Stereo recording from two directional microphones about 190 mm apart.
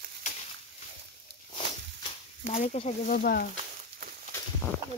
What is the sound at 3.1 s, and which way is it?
Speech, 50° left (ahead or behind).